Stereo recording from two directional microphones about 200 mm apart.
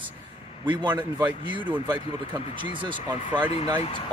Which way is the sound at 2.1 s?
25° right (ahead or behind).